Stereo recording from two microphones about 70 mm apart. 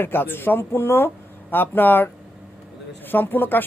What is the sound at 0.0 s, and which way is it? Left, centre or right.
Speech, left.